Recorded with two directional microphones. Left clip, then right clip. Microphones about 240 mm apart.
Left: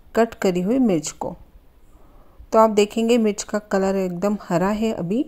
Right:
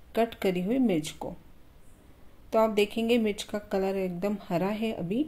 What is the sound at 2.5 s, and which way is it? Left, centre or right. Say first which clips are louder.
Speech: left 9 dB; left.